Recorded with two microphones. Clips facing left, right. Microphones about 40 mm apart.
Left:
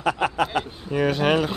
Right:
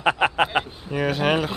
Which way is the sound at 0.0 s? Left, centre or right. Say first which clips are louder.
Right 2 dB; right.